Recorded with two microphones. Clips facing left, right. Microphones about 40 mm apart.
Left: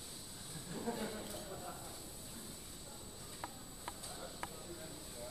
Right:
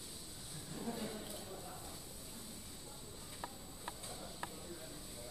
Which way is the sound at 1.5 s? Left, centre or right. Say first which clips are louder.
Left 2 dB; centre.